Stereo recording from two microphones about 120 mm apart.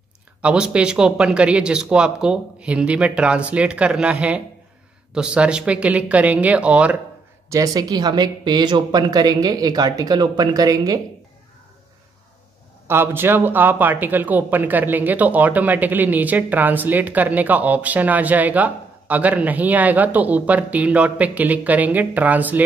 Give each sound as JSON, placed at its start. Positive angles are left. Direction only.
{"t": 0.4, "sound": "speech", "side_deg": -10}
{"t": 7.4, "sound": "speech", "side_deg": -25}
{"t": 12.8, "sound": "speech", "side_deg": -20}